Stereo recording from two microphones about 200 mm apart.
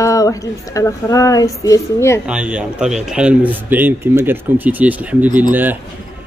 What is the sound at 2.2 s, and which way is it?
Speech, 5° right (ahead or behind).